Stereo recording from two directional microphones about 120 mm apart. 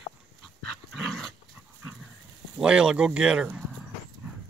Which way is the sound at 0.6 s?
Centre (ahead or behind).